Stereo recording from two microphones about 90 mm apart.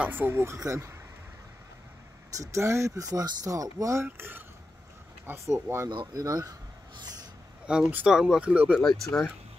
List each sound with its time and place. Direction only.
0.0 s speech: 20° right (ahead or behind)
2.3 s speech: 35° right (ahead or behind)
6.1 s speech: 45° right (ahead or behind)
7.6 s speech: 10° right (ahead or behind)
8.7 s speech: 5° left (ahead or behind)